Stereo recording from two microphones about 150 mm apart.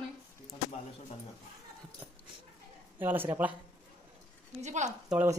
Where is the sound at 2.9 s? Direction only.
15° right (ahead or behind).